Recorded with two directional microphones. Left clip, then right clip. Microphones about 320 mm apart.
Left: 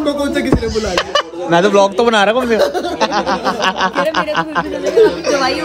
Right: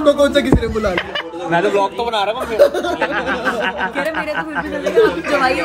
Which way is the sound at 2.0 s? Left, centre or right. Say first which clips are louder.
Left 7 dB; left.